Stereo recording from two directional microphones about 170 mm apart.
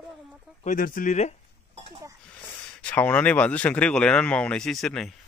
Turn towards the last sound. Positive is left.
turn(degrees=0)  # may be behind; listen again after turning